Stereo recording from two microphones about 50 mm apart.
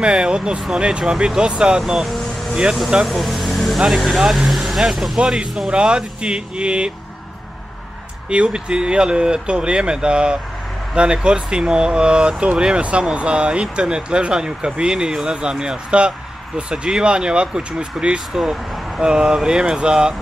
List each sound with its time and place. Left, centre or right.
0.0 s speech: centre
1.8 s vehicle: centre
3.0 s speech: centre
5.2 s speech: centre
8.3 s speech: centre